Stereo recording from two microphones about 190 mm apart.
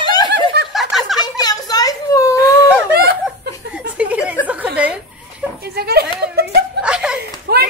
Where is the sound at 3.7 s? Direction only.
5° right (ahead or behind).